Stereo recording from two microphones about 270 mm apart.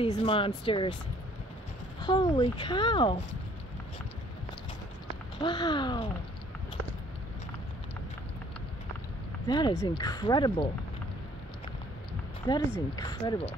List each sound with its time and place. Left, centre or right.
0.0 s speech: centre
2.0 s speech: centre
5.4 s speech: centre
9.5 s speech: centre
12.5 s speech: centre